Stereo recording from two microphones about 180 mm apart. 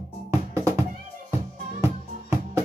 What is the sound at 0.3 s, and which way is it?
Music, 15° right (ahead or behind).